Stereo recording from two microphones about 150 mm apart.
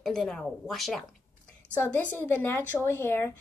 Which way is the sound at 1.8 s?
15° left (ahead or behind).